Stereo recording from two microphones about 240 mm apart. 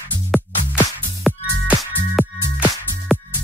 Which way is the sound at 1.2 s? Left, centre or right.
Centre.